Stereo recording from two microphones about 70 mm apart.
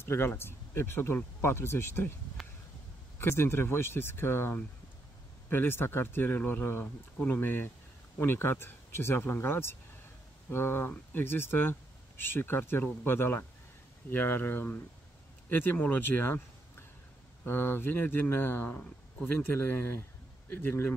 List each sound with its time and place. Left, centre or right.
0.0 s speech: left
3.2 s speech: left